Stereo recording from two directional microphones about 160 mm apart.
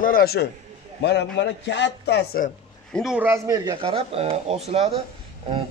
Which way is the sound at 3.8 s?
35° right (ahead or behind).